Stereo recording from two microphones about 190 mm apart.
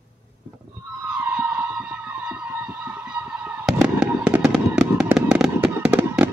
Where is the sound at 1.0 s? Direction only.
5° right (ahead or behind).